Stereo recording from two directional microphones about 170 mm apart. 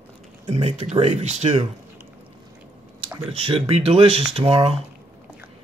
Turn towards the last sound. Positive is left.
turn(degrees=-35)  # may be behind; listen again after turning